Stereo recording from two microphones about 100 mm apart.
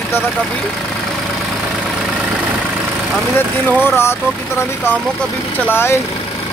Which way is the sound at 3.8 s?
25° left (ahead or behind).